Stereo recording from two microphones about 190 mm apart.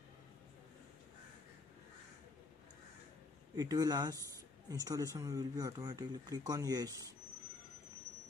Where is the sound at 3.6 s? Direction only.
20° right (ahead or behind).